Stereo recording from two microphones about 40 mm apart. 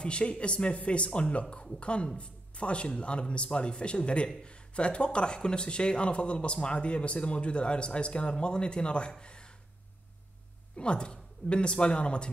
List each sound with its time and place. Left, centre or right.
0.0 s speech: left
9.2 s a sound: left
10.8 s speech: left